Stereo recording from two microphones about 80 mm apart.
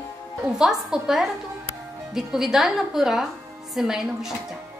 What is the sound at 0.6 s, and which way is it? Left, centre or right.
A woman's voice, centre.